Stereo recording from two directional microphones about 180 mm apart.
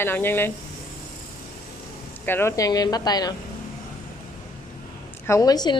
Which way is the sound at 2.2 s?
15° left (ahead or behind).